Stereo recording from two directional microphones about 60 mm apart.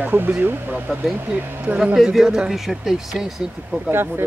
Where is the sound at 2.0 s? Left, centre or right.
Centre.